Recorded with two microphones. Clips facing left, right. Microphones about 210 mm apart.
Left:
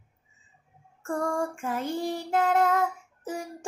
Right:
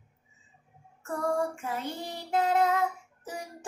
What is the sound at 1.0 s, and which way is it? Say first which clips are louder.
Child singing: left 1 dB; 45° left (ahead or behind).